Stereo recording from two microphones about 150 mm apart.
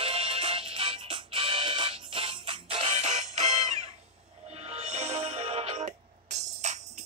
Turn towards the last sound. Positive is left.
turn(degrees=-50)  # may be behind; listen again after turning